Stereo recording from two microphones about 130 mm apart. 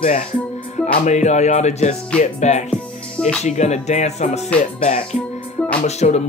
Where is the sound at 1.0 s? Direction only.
60° left (ahead or behind).